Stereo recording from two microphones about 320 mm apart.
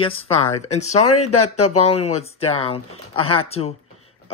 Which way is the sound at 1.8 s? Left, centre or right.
Centre.